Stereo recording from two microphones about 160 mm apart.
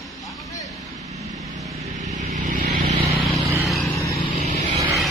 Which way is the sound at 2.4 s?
60° right (ahead or behind).